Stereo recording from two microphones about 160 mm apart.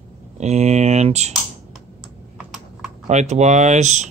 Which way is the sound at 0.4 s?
45° right (ahead or behind).